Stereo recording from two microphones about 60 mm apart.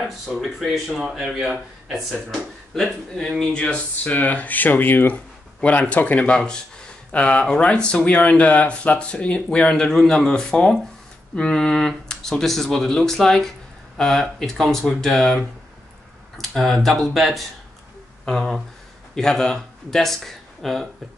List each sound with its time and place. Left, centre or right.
0.0 s speech: centre
0.9 s speech: centre
1.2 s speech: centre
2.7 s speech: centre
3.3 s speech: centre
4.0 s speech: left
6.3 s speech: centre
18.2 s speech: centre